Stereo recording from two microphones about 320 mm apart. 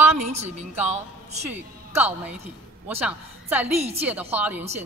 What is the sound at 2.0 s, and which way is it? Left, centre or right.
Speech, centre.